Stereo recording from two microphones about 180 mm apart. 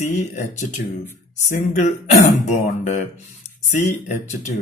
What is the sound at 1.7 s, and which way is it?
Speech, 40° left (ahead or behind).